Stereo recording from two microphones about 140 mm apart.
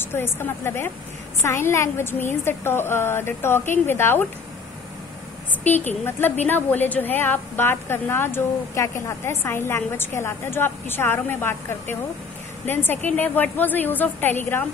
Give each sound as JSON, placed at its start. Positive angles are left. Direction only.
{"t": 0.0, "sound": "a woman's voice", "side_deg": 15}
{"t": 5.7, "sound": "a woman's voice", "side_deg": 15}